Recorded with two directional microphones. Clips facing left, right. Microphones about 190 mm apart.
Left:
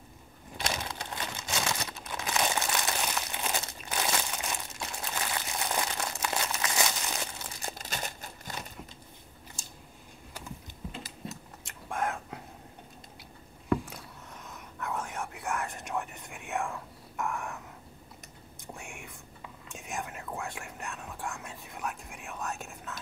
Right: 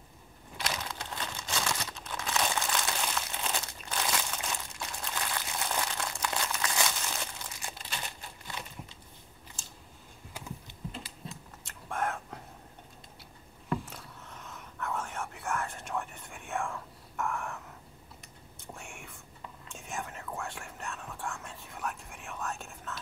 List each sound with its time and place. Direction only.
0.6 s crumpling: 20° left (ahead or behind)
7.5 s crumpling: 40° left (ahead or behind)
11.0 s typing: 40° left (ahead or behind)
11.6 s a sound: 10° left (ahead or behind)
13.9 s whispering: 15° left (ahead or behind)
18.7 s whispering: 15° left (ahead or behind)